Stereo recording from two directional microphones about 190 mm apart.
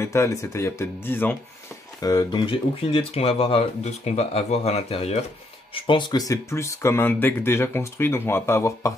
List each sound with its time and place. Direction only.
0.0 s speech: 15° left (ahead or behind)